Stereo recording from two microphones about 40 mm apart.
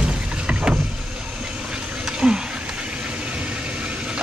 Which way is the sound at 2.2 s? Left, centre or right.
Right.